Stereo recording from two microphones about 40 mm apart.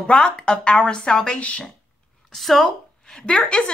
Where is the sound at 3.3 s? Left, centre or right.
Left.